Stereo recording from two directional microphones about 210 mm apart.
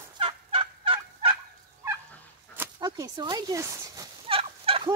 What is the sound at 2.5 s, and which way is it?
Goat, 15° right (ahead or behind).